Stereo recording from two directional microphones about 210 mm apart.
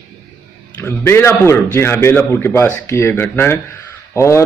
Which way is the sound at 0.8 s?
10° left (ahead or behind).